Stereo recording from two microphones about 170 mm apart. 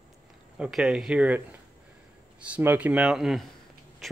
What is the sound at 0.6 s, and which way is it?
Speech, centre (ahead or behind).